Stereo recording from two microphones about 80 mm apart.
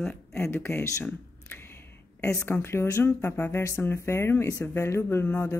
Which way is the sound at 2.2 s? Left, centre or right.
Left.